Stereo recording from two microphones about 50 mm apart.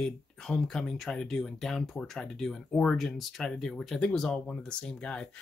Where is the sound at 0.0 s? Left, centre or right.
Centre.